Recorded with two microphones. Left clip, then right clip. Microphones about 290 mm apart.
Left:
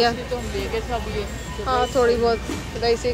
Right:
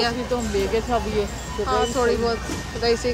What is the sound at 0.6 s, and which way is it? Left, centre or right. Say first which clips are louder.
Speech: right 5 dB; right.